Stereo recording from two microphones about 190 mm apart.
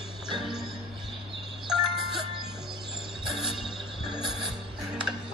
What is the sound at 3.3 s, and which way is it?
Music, centre (ahead or behind).